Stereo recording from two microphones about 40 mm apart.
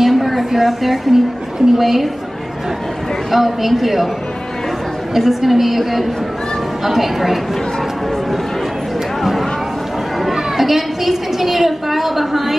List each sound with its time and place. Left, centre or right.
0.0 s a sound: centre
1.7 s a woman's voice: centre
3.3 s a woman's voice: centre
5.1 s a woman's voice: centre
10.2 s a woman's voice: centre